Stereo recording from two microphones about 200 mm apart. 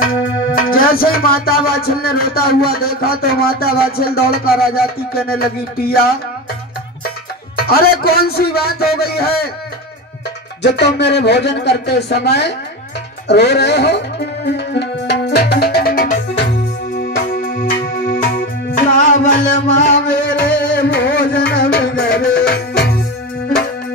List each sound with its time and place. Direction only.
0.6 s music: 45° left (ahead or behind)
7.5 s music: 50° left (ahead or behind)
10.6 s speech: 55° left (ahead or behind)
17.0 s music: 55° left (ahead or behind)
18.8 s music: 40° left (ahead or behind)
20.1 s music: 60° left (ahead or behind)